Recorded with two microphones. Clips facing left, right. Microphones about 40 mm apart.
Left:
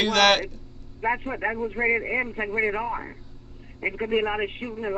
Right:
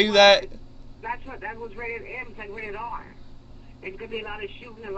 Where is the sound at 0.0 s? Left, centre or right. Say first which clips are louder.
Right 4 dB; centre.